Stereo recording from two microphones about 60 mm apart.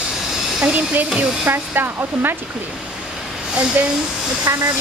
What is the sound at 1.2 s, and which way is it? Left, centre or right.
Speech, right.